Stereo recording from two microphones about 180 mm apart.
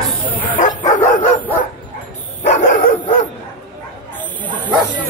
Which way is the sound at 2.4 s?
45° left (ahead or behind).